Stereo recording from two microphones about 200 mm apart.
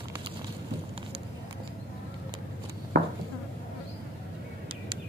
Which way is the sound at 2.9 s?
55° right (ahead or behind).